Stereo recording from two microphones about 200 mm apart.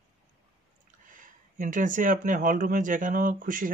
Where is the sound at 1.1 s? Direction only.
40° right (ahead or behind).